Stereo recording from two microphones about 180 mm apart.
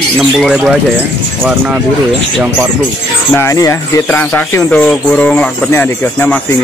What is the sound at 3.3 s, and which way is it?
Speech, 15° left (ahead or behind).